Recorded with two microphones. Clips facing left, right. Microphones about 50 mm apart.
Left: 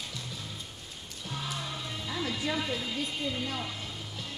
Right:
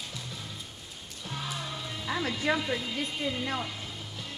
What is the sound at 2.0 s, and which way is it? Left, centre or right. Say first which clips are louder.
Music: right 4 dB; right.